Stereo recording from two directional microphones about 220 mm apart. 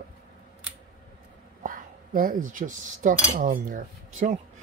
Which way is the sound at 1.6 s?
40° right (ahead or behind).